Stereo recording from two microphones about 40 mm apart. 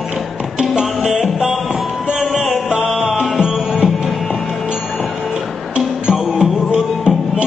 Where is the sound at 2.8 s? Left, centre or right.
Centre.